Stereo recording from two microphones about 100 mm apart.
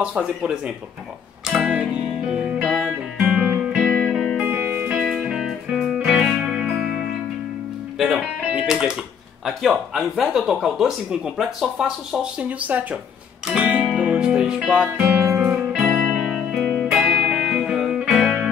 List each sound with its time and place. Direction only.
0.0 s speech: 10° right (ahead or behind)
1.4 s music: 5° right (ahead or behind)
4.0 s music: centre (ahead or behind)
8.0 s music: 5° right (ahead or behind)
9.4 s speech: centre (ahead or behind)
15.2 s music: 25° right (ahead or behind)
15.8 s music: 5° right (ahead or behind)